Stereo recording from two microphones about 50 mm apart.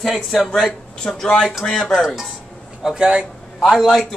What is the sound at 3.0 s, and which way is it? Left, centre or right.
Speech, right.